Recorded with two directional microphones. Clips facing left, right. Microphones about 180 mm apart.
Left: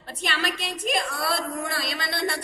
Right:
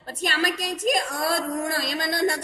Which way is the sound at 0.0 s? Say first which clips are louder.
Right 3 dB; 45° right (ahead or behind).